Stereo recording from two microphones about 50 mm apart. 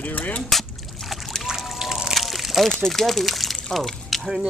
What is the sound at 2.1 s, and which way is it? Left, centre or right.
Crumpling, centre.